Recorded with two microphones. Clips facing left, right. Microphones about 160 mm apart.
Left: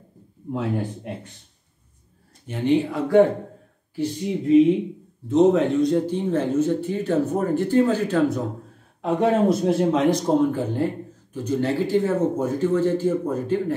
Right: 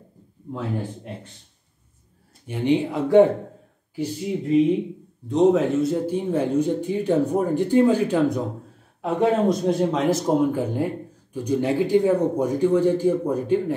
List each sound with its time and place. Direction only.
2.4 s speech: 15° right (ahead or behind)
4.5 s speech: centre (ahead or behind)
9.0 s speech: 5° left (ahead or behind); by 13.7 s 15° right (ahead or behind)